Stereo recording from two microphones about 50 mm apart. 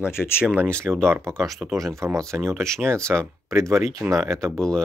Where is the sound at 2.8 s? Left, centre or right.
Right.